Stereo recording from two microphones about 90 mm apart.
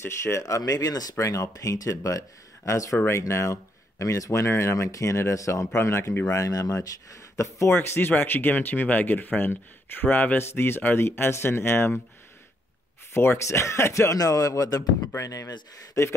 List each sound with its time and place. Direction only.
0.0 s speech: 30° left (ahead or behind)
6.3 s speech: 40° left (ahead or behind)
7.7 s speech: 25° left (ahead or behind)
13.1 s speech: 25° left (ahead or behind)